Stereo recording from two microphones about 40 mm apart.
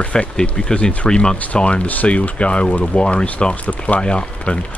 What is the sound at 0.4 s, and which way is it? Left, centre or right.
Speech, centre.